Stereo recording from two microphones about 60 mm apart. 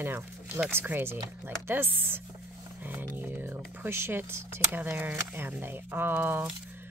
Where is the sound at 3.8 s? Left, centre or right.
Right.